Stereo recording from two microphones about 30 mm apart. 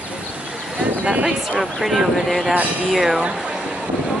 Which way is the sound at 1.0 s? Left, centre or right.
Right.